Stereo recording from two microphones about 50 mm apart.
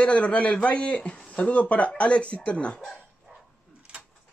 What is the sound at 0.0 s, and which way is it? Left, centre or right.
Speech, left.